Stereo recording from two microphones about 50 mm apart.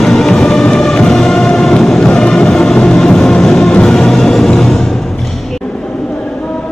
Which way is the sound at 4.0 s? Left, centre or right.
Centre.